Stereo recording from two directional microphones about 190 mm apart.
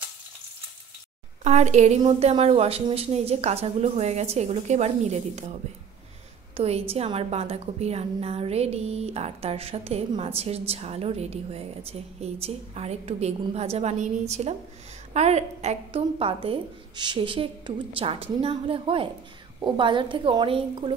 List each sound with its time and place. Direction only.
1.4 s a woman's voice: 35° right (ahead or behind)